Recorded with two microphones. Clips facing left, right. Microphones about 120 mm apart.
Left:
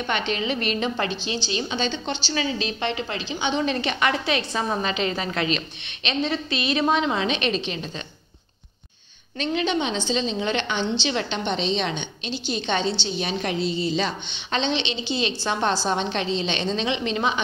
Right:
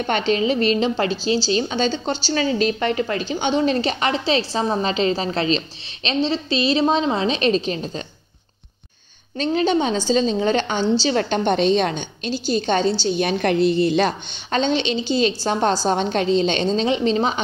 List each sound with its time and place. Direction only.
0.0 s a woman's voice: 40° right (ahead or behind)
9.4 s a woman's voice: 40° right (ahead or behind)